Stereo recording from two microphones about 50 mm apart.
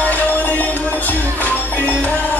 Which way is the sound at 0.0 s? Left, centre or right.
Left.